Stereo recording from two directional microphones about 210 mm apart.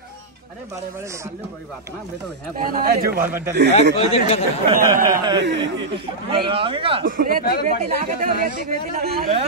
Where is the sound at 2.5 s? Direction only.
40° right (ahead or behind).